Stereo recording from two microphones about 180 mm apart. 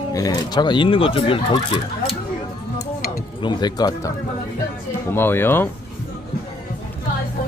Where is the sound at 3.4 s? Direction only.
25° left (ahead or behind).